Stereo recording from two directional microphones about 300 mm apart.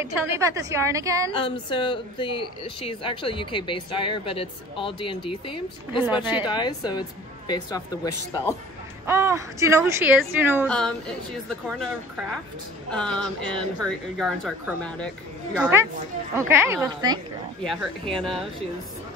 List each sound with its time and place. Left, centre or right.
0.0 s a woman's voice: centre
1.3 s speech: centre
9.0 s a woman's voice: centre
12.9 s a woman's voice: centre
17.6 s speech: centre